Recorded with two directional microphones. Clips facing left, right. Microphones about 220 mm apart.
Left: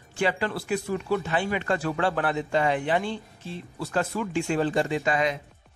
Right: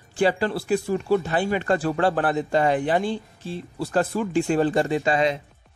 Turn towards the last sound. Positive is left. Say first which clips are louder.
# right 4 dB
turn(degrees=-30)  # may be behind; listen again after turning